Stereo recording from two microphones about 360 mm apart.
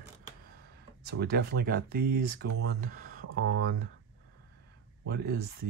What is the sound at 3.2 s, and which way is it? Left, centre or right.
Speech, right.